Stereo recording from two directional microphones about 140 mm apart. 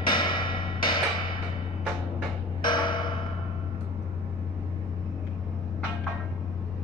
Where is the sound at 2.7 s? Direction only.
35° left (ahead or behind).